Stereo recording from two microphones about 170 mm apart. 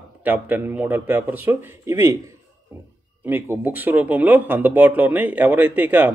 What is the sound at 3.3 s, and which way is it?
Speech, 10° right (ahead or behind).